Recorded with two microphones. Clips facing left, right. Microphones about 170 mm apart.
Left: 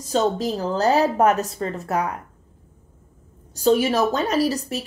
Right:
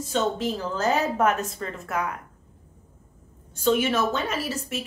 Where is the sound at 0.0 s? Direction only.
40° left (ahead or behind).